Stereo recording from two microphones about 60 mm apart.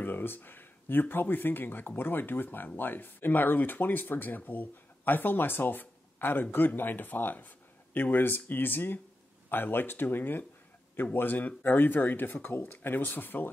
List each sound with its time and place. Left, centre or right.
0.0 s speech: left